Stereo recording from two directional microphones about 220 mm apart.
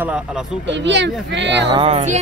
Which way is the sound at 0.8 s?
55° right (ahead or behind).